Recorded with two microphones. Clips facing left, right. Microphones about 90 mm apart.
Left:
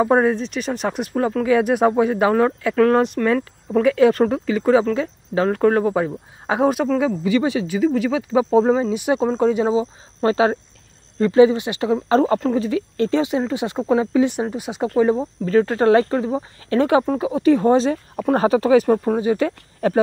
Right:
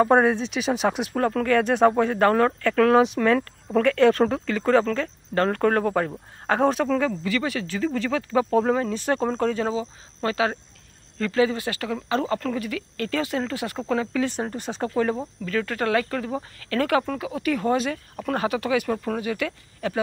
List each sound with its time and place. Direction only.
0.0 s speech: centre (ahead or behind); by 12.0 s 20° left (ahead or behind)
12.1 s speech: 35° left (ahead or behind); by 14.9 s 10° left (ahead or behind)
15.1 s speech: 30° left (ahead or behind)